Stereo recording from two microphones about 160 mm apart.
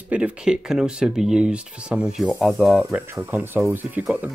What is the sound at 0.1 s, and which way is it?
Speech, 5° right (ahead or behind).